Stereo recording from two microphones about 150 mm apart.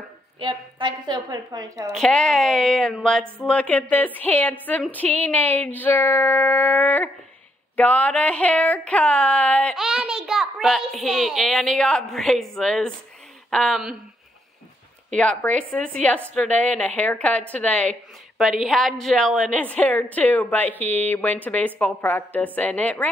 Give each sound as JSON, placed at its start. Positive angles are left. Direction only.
{"t": 0.4, "sound": "a woman's voice", "side_deg": -30}
{"t": 1.9, "sound": "a child's voice", "side_deg": 5}
{"t": 9.8, "sound": "a child's voice", "side_deg": -5}
{"t": 15.1, "sound": "a woman's voice", "side_deg": 5}